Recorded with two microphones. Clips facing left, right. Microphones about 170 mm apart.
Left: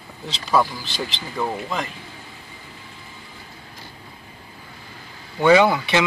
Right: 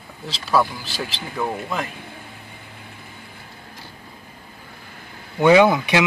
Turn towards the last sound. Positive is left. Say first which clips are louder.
# right 1 dB
turn(degrees=-15)  # may be behind; listen again after turning